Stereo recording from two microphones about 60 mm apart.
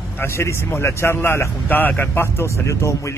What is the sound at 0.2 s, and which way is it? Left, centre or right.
Speech, left.